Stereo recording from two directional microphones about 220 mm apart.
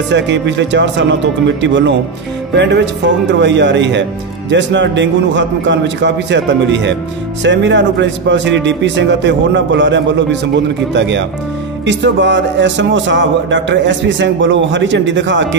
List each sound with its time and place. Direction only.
0.1 s a man's voice: 55° right (ahead or behind)